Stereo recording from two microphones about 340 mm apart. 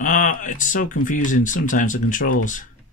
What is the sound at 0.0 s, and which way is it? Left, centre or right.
Speech, left.